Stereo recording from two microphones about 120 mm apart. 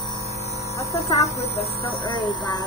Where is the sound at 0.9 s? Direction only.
60° left (ahead or behind).